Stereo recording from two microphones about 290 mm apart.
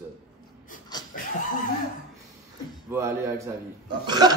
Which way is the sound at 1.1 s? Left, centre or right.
Left.